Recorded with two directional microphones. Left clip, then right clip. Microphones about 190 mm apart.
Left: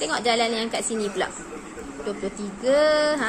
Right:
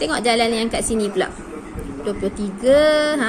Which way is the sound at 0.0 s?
50° right (ahead or behind).